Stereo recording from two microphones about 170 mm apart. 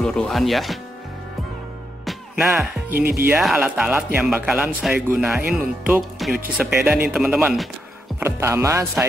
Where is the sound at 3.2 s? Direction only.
5° right (ahead or behind).